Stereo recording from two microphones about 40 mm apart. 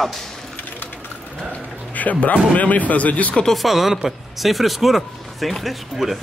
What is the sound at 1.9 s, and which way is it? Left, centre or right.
Speech, left.